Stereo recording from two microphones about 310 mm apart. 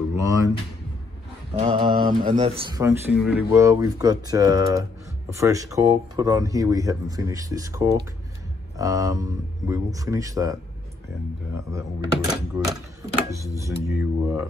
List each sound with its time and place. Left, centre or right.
0.1 s a sound: centre
1.5 s speech: centre
12.3 s speech: centre